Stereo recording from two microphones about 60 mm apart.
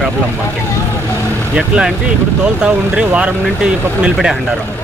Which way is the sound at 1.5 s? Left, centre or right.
Centre.